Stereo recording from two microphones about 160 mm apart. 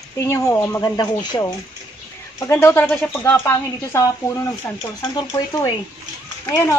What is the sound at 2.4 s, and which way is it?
Speech, 15° left (ahead or behind).